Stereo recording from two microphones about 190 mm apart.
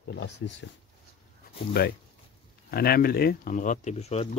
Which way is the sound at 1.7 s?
55° left (ahead or behind).